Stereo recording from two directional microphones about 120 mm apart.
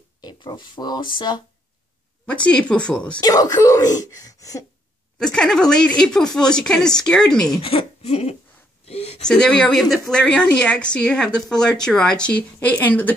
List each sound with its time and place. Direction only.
0.2 s speech: 40° left (ahead or behind)
2.2 s a woman's voice: 10° left (ahead or behind)
3.2 s speech: 30° left (ahead or behind)
5.2 s speech: 5° left (ahead or behind)
7.6 s speech: 55° left (ahead or behind)
8.8 s a sound: 60° left (ahead or behind)
9.2 s a woman's voice: 5° left (ahead or behind)